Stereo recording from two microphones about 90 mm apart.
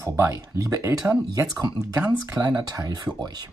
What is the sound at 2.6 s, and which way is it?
Speech, 45° right (ahead or behind).